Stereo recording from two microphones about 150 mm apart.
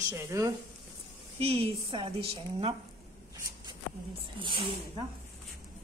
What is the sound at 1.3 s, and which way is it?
A woman's voice, 40° right (ahead or behind).